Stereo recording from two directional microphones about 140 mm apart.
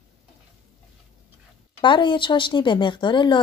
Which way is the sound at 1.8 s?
35° left (ahead or behind).